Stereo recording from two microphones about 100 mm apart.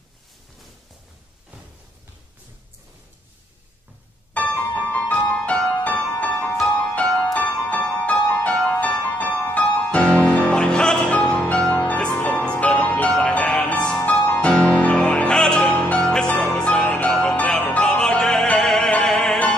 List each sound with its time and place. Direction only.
4.3 s music: 15° left (ahead or behind)